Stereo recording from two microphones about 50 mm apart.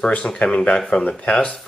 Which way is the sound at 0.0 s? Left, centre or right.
Left.